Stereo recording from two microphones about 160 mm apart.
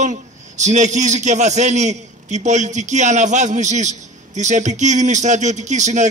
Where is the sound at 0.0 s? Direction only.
45° right (ahead or behind).